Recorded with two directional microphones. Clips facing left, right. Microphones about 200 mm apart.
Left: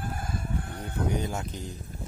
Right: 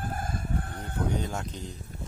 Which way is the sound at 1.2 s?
5° left (ahead or behind).